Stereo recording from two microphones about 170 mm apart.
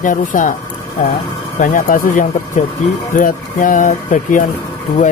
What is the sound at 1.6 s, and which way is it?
Speech, 55° left (ahead or behind).